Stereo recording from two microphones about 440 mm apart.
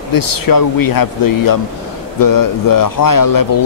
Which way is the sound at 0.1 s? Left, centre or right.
Left.